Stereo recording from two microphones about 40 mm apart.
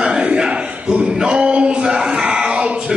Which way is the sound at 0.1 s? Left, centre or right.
Right.